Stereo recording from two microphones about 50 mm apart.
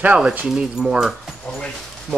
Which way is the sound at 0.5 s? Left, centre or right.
Centre.